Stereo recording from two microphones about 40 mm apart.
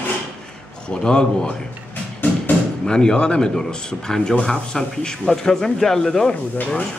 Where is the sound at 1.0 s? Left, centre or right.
Centre.